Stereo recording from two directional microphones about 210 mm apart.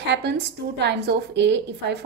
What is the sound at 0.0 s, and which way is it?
A woman's voice, 55° right (ahead or behind).